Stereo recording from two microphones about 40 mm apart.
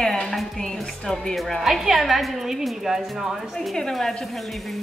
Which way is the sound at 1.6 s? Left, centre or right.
Centre.